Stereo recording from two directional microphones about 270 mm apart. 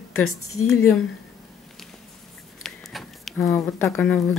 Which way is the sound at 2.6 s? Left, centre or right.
Centre.